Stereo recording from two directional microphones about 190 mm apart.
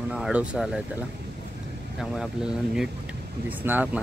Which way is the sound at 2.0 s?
Centre (ahead or behind).